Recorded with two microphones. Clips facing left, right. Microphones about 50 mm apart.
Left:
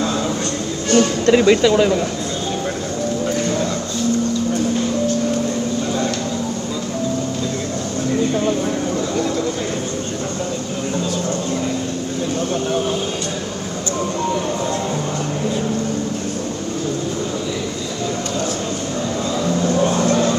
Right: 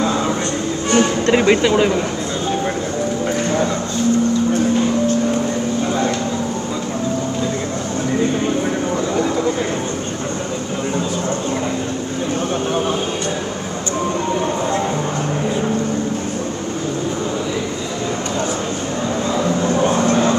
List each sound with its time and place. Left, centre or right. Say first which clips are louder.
0.9 s speech: left 1 dB; right
9.1 s a sound: right 2 dB; right
19.4 s vehicle: even; right